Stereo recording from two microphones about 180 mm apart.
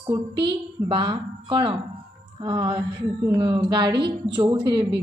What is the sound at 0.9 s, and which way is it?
A woman's voice, 25° right (ahead or behind).